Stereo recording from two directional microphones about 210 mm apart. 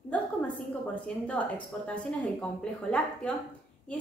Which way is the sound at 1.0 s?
5° left (ahead or behind).